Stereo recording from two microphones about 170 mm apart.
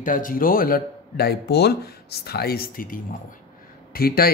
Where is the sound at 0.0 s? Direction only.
50° left (ahead or behind).